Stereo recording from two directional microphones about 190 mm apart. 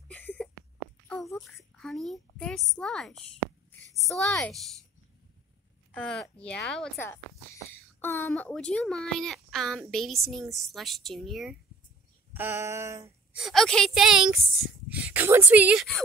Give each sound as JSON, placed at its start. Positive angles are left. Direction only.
{"t": 0.1, "sound": "a sound", "side_deg": 10}
{"t": 1.0, "sound": "a child's voice", "side_deg": 5}
{"t": 3.9, "sound": "a woman's voice", "side_deg": 15}
{"t": 4.5, "sound": "a woman's voice", "side_deg": 0}
{"t": 5.9, "sound": "a woman's voice", "side_deg": 5}
{"t": 12.4, "sound": "a sound", "side_deg": -10}
{"t": 13.4, "sound": "a woman's voice", "side_deg": 0}